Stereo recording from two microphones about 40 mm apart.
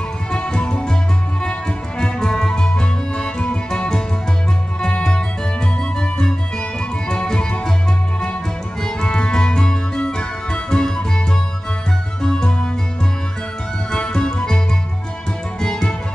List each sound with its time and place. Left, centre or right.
0.3 s music: left
2.0 s music: centre
8.8 s music: left
13.9 s music: left
15.6 s music: left